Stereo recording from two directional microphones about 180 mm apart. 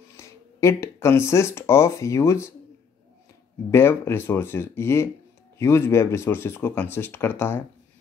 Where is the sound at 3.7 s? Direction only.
15° left (ahead or behind).